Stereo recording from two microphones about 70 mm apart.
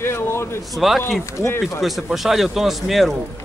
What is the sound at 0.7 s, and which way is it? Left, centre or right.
Speech, centre.